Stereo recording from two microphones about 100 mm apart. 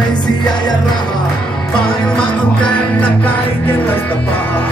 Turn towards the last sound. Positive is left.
turn(degrees=10)  # may be behind; listen again after turning